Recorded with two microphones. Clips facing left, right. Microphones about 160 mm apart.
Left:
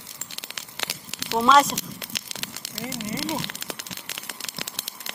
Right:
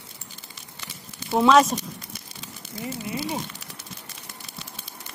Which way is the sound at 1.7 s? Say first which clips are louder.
Right 3 dB; 85° left.